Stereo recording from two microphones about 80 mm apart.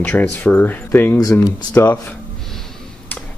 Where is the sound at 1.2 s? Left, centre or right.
Left.